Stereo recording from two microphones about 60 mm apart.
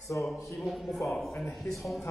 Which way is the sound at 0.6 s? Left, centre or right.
Centre.